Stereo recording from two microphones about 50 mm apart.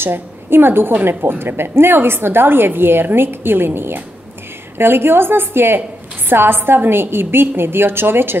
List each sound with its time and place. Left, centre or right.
0.0 s a woman's voice: right